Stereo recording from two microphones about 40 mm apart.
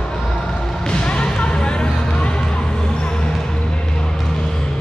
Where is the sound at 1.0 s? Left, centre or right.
Left.